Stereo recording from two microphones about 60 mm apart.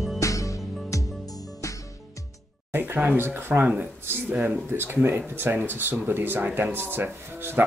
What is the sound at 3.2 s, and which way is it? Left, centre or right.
Speech, right.